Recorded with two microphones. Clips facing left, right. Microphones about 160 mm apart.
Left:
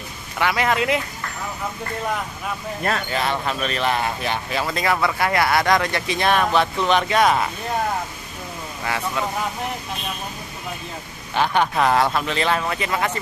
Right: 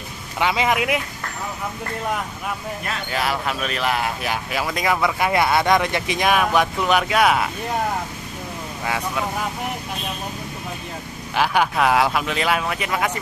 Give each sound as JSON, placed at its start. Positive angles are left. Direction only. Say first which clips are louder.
{"t": 0.4, "sound": "speech", "louder": "even", "side_deg": -20}
{"t": 3.1, "sound": "speech", "louder": "even", "side_deg": -5}
{"t": 8.8, "sound": "speech", "louder": "even", "side_deg": -10}
{"t": 11.3, "sound": "speech", "louder": "even", "side_deg": -5}